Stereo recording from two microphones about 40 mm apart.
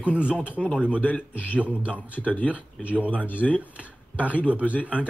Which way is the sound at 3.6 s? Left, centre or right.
Right.